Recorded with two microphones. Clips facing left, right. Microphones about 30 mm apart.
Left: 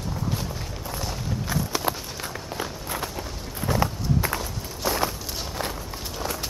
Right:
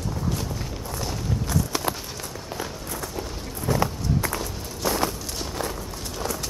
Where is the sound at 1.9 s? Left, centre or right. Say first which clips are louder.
Left 1 dB; centre.